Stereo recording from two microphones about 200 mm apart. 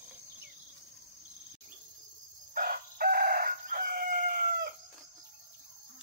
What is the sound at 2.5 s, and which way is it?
Chicken, 45° right (ahead or behind).